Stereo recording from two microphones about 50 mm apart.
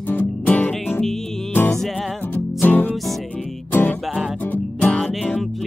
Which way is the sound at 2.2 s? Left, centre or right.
Left.